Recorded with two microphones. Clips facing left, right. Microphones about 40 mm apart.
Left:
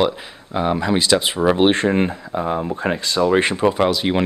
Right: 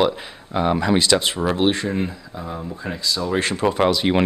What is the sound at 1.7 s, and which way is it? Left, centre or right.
Speech, left.